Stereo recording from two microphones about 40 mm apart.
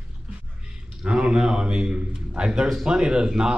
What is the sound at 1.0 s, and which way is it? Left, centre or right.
A man's voice, right.